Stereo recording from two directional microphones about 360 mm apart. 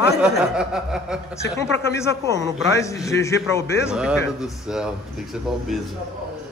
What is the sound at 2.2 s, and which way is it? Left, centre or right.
Speech, centre.